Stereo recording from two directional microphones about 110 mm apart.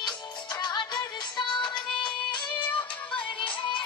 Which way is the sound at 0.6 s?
40° left (ahead or behind).